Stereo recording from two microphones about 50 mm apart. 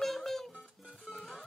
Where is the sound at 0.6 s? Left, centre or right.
Centre.